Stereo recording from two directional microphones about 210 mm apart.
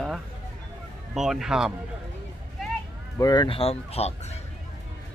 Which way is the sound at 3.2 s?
20° left (ahead or behind).